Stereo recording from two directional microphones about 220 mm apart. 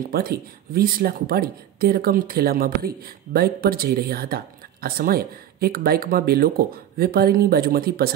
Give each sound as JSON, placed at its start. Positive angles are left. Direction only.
{"t": 0.1, "sound": "speech", "side_deg": -45}